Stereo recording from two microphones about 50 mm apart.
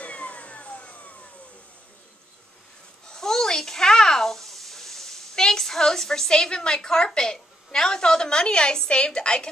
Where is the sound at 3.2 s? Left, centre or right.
Centre.